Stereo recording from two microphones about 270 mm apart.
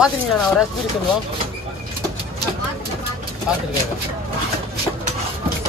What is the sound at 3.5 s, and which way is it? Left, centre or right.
Speech, centre.